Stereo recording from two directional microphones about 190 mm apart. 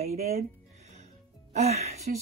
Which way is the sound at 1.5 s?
35° right (ahead or behind).